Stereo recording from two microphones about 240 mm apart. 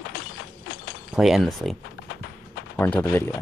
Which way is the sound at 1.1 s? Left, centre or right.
Centre.